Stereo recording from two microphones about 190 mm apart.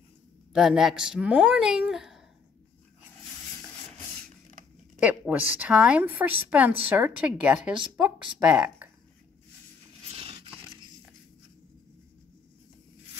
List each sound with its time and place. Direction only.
0.5 s speech: centre (ahead or behind)
5.0 s a woman's voice: 5° right (ahead or behind)
10.1 s a sound: 30° right (ahead or behind)